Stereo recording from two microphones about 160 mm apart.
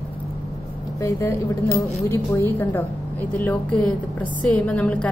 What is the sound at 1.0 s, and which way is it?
A woman's voice, 20° left (ahead or behind).